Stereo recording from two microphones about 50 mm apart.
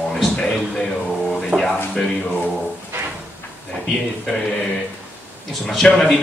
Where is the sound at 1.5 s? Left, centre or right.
Right.